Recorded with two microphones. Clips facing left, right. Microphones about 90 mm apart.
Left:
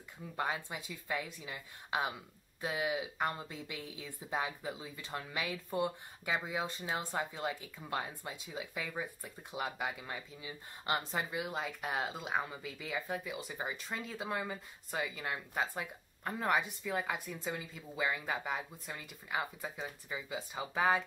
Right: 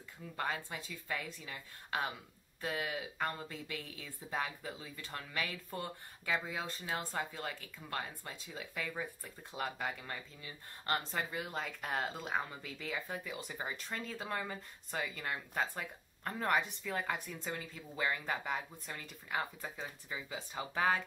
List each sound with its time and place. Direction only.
0.4 s speech: 15° left (ahead or behind)